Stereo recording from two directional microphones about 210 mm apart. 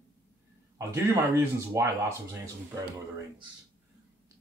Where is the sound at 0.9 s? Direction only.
10° right (ahead or behind).